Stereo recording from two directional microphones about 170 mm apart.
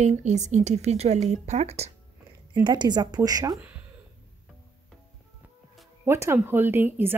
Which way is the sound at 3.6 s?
10° right (ahead or behind).